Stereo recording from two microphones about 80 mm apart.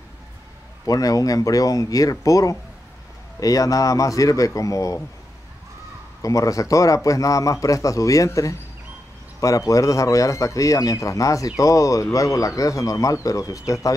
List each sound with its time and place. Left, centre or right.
0.8 s a man's voice: left
6.2 s a man's voice: left